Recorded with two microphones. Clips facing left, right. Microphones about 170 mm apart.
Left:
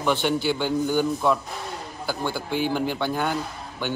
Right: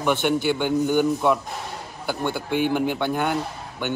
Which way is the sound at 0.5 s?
15° right (ahead or behind).